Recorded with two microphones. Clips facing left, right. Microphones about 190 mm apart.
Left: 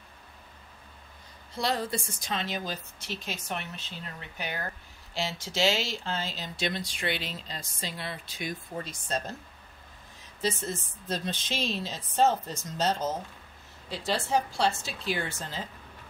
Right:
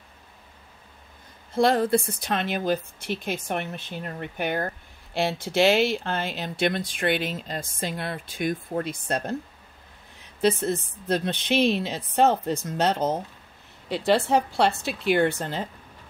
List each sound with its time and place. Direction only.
1.5 s speech: 50° right (ahead or behind)
10.4 s speech: 60° right (ahead or behind)